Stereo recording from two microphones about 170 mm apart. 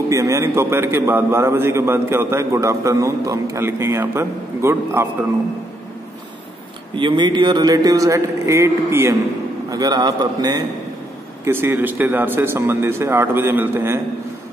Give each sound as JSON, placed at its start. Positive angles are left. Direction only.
{"t": 0.1, "sound": "a man's voice", "side_deg": -20}
{"t": 7.0, "sound": "a man's voice", "side_deg": -30}